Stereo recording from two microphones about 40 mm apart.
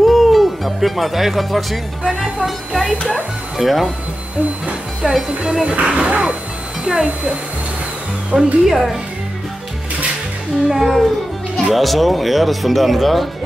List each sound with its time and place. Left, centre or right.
0.0 s speech: centre
3.5 s speech: centre
5.0 s speech: centre
5.9 s music: right
6.8 s speech: centre
8.3 s music: right
8.6 s speech: centre
10.7 s speech: centre